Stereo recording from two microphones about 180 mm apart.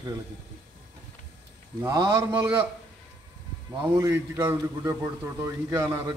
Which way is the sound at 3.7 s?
15° right (ahead or behind).